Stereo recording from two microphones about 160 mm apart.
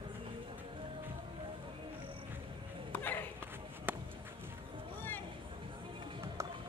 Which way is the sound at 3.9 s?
10° right (ahead or behind).